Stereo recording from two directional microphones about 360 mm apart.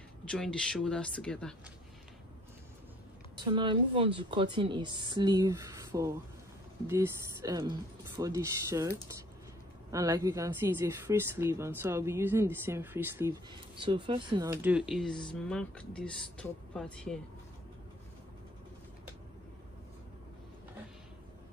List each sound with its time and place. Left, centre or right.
0.2 s speech: centre
3.3 s speech: centre